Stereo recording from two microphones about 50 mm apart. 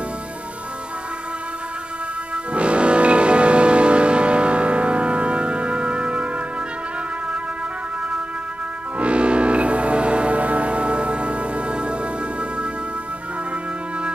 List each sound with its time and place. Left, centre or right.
2.5 s music: right
9.0 s music: right